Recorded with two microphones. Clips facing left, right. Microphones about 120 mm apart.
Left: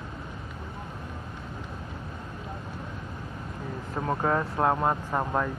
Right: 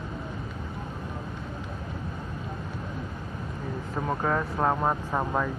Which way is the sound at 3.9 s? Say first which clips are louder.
Left 1 dB; 5° left (ahead or behind).